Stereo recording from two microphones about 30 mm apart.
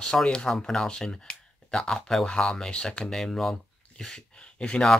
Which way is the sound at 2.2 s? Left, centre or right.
Left.